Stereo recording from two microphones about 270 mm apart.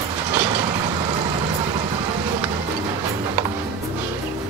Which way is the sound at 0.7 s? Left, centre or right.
Centre.